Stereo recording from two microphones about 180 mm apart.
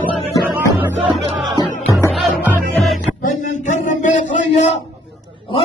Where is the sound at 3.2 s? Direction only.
45° left (ahead or behind).